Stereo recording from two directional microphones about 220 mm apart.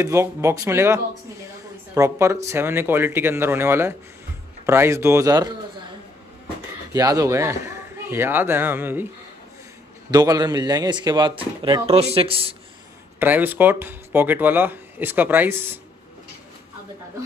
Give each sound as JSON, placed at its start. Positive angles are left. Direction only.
{"t": 0.0, "sound": "speech", "side_deg": -15}
{"t": 6.9, "sound": "a man's voice", "side_deg": -15}
{"t": 10.1, "sound": "speech", "side_deg": -15}
{"t": 13.2, "sound": "speech", "side_deg": -10}